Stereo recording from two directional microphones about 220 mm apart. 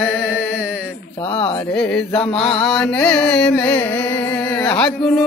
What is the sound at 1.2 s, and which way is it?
Carnatic music, 20° left (ahead or behind).